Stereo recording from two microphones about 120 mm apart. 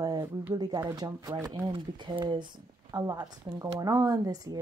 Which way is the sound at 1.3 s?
20° right (ahead or behind).